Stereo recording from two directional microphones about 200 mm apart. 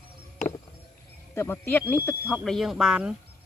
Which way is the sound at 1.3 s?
10° left (ahead or behind).